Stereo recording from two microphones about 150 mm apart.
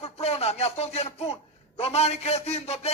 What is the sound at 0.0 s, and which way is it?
A man's voice, 45° left (ahead or behind).